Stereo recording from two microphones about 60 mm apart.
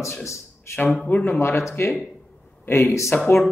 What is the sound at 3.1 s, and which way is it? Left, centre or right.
Speech, left.